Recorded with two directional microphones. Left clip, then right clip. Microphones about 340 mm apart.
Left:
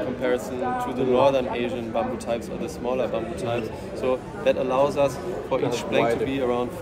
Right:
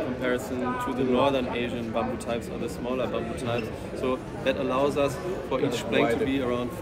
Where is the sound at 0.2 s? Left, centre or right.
Centre.